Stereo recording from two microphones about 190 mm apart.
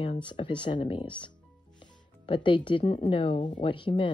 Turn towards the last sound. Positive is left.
turn(degrees=25)  # may be behind; listen again after turning